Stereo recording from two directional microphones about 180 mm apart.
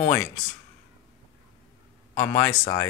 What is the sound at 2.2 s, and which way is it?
Speech, 10° left (ahead or behind).